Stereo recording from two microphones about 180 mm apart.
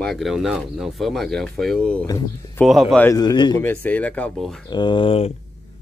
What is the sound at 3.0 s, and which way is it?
Speech, 20° left (ahead or behind).